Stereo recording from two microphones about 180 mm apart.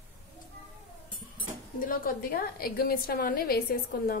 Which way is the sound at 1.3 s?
50° left (ahead or behind).